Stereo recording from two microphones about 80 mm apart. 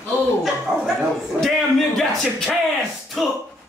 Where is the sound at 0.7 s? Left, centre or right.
Centre.